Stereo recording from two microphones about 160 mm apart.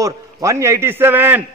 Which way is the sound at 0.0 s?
20° right (ahead or behind).